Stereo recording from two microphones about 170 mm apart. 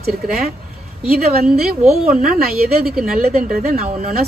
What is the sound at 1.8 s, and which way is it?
Speech, 5° right (ahead or behind).